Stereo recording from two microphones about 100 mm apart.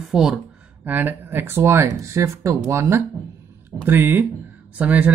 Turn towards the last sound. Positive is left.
turn(degrees=-15)  # may be behind; listen again after turning